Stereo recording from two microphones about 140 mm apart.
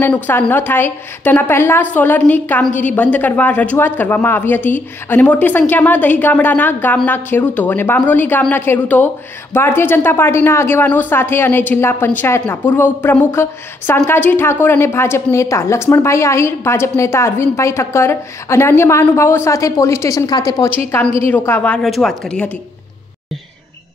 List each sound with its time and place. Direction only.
0.0 s a woman's voice: 15° left (ahead or behind)
21.2 s a woman's voice: 15° left (ahead or behind)